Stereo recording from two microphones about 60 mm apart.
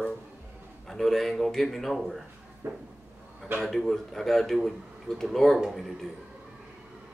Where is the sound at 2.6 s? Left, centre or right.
Right.